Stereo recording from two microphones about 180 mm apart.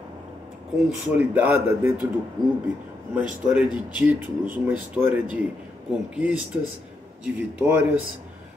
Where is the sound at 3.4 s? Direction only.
5° right (ahead or behind).